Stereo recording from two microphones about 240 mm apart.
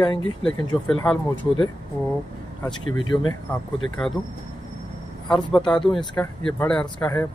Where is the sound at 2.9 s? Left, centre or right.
Centre.